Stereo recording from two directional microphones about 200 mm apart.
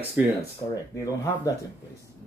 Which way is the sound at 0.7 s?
15° left (ahead or behind).